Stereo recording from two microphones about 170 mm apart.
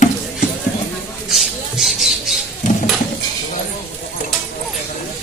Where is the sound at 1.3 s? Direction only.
Centre (ahead or behind).